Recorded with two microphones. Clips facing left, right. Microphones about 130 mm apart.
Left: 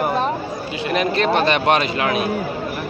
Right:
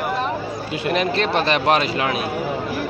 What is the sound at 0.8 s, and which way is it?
Speech, centre (ahead or behind).